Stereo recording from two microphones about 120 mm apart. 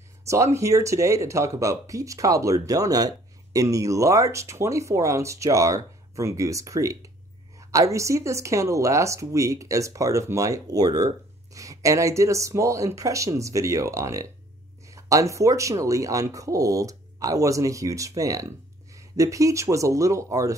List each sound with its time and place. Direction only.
0.3 s speech: 25° right (ahead or behind)